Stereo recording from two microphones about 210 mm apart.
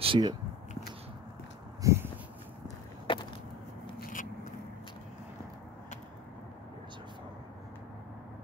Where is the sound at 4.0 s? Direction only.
40° left (ahead or behind).